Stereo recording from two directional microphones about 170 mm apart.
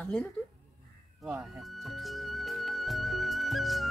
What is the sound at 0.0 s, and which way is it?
Speech, 5° left (ahead or behind).